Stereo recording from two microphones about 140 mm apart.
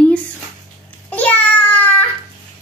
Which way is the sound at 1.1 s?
10° left (ahead or behind).